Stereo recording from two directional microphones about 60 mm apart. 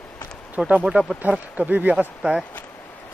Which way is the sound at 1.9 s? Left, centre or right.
Centre.